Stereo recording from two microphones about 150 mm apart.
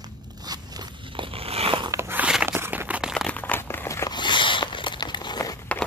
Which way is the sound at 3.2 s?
10° left (ahead or behind).